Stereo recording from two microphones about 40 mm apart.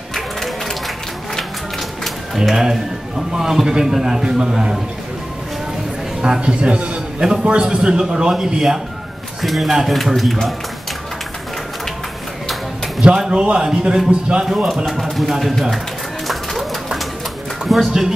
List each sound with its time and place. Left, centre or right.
0.1 s a sound: centre
2.3 s a man's voice: centre
6.2 s a man's voice: right
9.4 s speech: centre
13.0 s a man's voice: centre
14.9 s speech: centre
16.3 s bird: centre
17.6 s speech: centre